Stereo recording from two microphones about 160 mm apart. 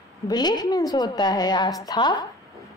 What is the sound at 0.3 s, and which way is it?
A woman's voice, 25° left (ahead or behind).